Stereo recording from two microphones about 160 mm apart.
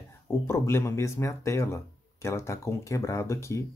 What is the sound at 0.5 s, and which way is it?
Speech, 15° left (ahead or behind).